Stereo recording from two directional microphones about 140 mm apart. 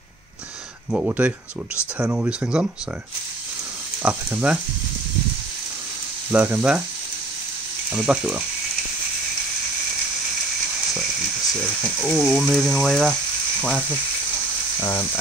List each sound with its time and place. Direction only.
0.9 s speech: 10° right (ahead or behind)
4.0 s speech: 10° right (ahead or behind)
6.3 s speech: 10° right (ahead or behind)
7.9 s speech: 5° right (ahead or behind)
11.6 s speech: centre (ahead or behind); by 15.0 s 15° left (ahead or behind)